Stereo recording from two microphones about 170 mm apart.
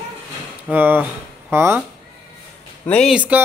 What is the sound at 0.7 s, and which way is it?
Speech, 10° right (ahead or behind).